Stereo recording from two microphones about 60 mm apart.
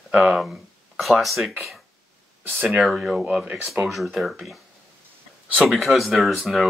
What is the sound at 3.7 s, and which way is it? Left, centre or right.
Speech, centre.